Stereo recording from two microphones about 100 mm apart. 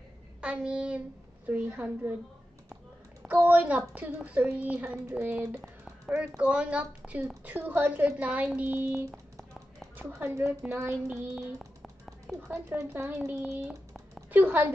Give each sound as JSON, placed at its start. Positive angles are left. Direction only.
{"t": 0.4, "sound": "a woman's voice", "side_deg": -10}
{"t": 3.3, "sound": "speech", "side_deg": -15}
{"t": 9.1, "sound": "a sound", "side_deg": 0}
{"t": 9.9, "sound": "a woman's voice", "side_deg": -20}
{"t": 10.9, "sound": "a sound", "side_deg": -5}
{"t": 12.4, "sound": "a woman's voice", "side_deg": -30}
{"t": 14.3, "sound": "a woman's voice", "side_deg": -20}